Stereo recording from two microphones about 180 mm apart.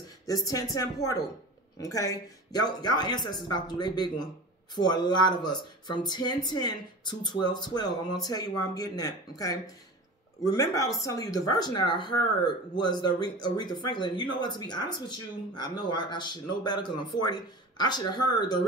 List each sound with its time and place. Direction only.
0.3 s speech: 20° left (ahead or behind)
1.8 s speech: 20° left (ahead or behind)